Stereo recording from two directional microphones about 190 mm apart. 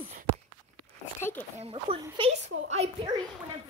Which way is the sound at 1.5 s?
30° right (ahead or behind).